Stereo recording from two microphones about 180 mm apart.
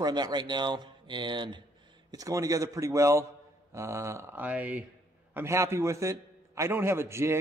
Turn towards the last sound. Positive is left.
turn(degrees=-15)  # may be behind; listen again after turning